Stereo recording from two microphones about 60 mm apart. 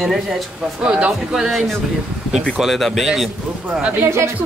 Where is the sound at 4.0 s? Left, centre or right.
Right.